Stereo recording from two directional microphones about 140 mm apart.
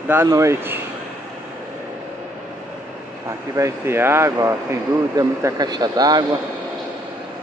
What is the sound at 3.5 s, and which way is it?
Speech, 20° right (ahead or behind).